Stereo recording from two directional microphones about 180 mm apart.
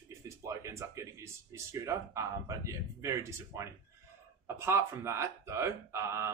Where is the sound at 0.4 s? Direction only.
15° right (ahead or behind).